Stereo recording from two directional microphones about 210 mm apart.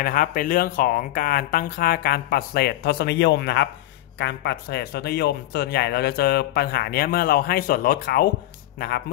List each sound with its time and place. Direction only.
0.0 s speech: 40° left (ahead or behind)